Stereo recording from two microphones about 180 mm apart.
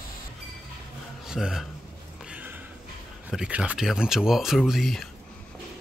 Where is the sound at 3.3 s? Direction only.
5° right (ahead or behind).